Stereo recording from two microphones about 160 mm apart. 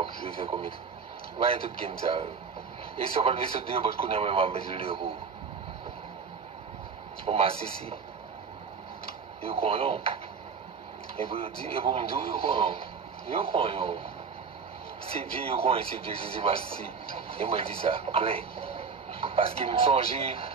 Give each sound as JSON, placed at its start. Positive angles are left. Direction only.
{"t": 0.0, "sound": "radio", "side_deg": -35}
{"t": 1.4, "sound": "speech", "side_deg": -35}
{"t": 7.2, "sound": "speech", "side_deg": -35}
{"t": 9.4, "sound": "speech", "side_deg": -35}
{"t": 11.1, "sound": "speech", "side_deg": -35}
{"t": 15.0, "sound": "speech", "side_deg": -35}